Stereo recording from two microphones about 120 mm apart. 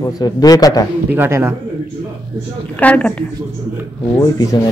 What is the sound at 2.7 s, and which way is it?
Speech, 10° left (ahead or behind).